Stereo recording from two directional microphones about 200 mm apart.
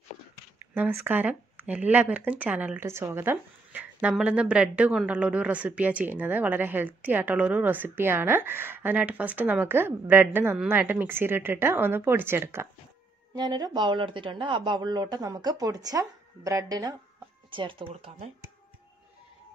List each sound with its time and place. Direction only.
0.7 s speech: 10° right (ahead or behind); by 18.3 s 25° right (ahead or behind)